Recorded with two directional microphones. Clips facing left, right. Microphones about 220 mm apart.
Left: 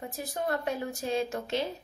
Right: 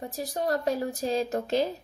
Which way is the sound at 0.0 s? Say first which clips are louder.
Right 3 dB; 35° right (ahead or behind).